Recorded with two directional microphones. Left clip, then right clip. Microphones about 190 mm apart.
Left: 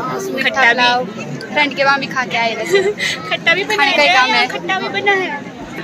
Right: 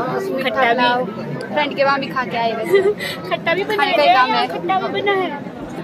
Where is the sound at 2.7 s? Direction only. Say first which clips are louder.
Left 1 dB; 25° right (ahead or behind).